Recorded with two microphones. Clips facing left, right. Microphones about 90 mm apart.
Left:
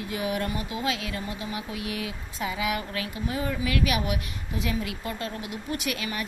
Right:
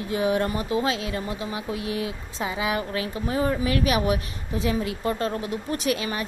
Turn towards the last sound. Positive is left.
turn(degrees=-30)  # may be behind; listen again after turning